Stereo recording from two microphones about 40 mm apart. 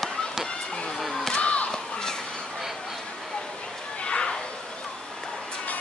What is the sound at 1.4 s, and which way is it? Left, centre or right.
Battle cry, left.